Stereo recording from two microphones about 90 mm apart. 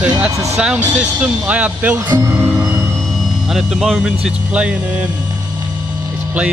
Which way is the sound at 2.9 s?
Centre (ahead or behind).